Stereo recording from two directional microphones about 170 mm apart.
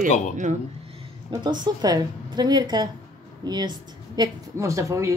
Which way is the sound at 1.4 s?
25° right (ahead or behind).